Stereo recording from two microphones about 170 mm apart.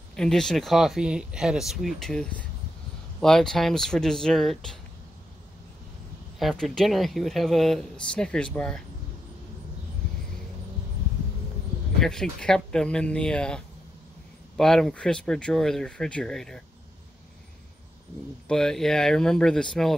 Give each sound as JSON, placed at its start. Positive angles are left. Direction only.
{"t": 0.1, "sound": "speech", "side_deg": 5}
{"t": 6.4, "sound": "speech", "side_deg": 5}
{"t": 12.0, "sound": "speech", "side_deg": 5}
{"t": 14.6, "sound": "speech", "side_deg": 0}
{"t": 18.5, "sound": "speech", "side_deg": 5}